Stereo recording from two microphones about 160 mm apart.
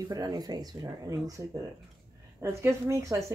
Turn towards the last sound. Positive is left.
turn(degrees=-20)  # may be behind; listen again after turning